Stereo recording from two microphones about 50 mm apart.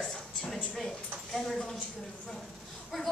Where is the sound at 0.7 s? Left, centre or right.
Centre.